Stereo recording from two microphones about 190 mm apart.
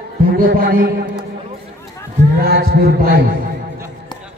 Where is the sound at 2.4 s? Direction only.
60° right (ahead or behind).